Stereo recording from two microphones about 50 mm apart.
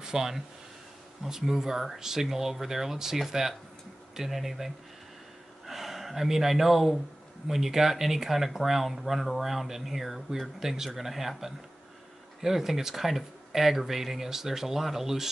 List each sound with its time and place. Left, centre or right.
0.0 s speech: centre